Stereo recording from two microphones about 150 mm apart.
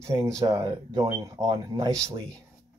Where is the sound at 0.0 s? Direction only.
20° right (ahead or behind).